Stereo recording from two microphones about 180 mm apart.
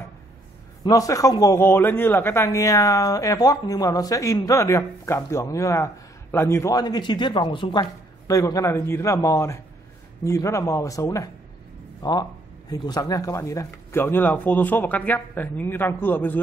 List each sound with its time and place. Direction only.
0.8 s speech: 20° left (ahead or behind)